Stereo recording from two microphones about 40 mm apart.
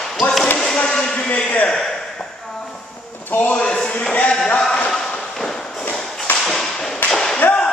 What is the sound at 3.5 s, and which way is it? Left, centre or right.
Speech, left.